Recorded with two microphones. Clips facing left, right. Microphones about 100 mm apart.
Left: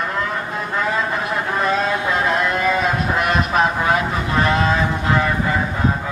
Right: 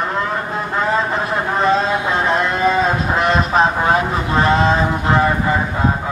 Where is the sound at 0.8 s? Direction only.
30° right (ahead or behind).